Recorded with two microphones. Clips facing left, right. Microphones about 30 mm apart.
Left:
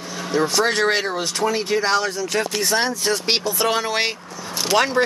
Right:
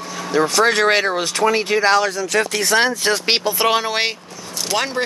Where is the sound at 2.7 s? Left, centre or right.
Right.